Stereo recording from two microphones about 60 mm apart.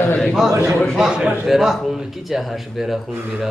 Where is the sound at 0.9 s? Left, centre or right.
Centre.